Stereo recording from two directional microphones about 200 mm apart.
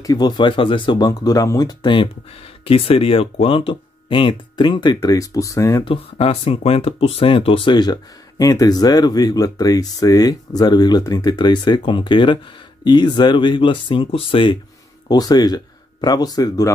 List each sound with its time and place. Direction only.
0.0 s speech: 20° left (ahead or behind)